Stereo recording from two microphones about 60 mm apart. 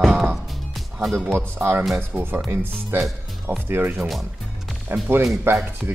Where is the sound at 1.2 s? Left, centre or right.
Right.